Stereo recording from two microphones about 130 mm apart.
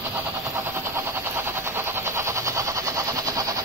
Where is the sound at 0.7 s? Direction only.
20° right (ahead or behind).